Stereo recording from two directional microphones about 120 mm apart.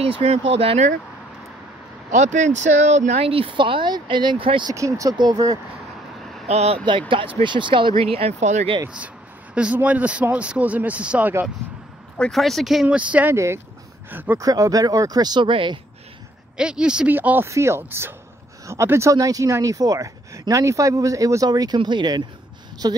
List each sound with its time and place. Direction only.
0.0 s speech: 55° right (ahead or behind)
2.0 s speech: 90° right; by 4.7 s 45° right (ahead or behind)
4.7 s speech: 25° right (ahead or behind)
6.4 s speech: 65° right (ahead or behind)
7.4 s speech: 40° right (ahead or behind)
8.0 s speech: 55° right (ahead or behind); by 8.6 s 70° right (ahead or behind)
8.8 s a sound: 10° right (ahead or behind)
9.8 s speech: 10° right (ahead or behind)
12.2 s speech: centre (ahead or behind); by 14.4 s 15° right (ahead or behind)
14.4 s speech: 30° right (ahead or behind)
16.5 s speech: 5° right (ahead or behind); by 23.0 s 35° right (ahead or behind)